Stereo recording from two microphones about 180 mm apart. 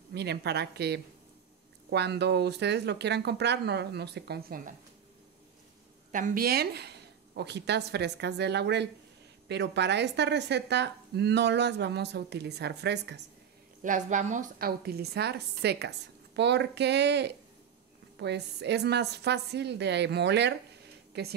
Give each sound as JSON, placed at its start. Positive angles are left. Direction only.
{"t": 0.1, "sound": "a woman's voice", "side_deg": -65}
{"t": 6.1, "sound": "a woman's voice", "side_deg": -50}
{"t": 13.8, "sound": "a woman's voice", "side_deg": -45}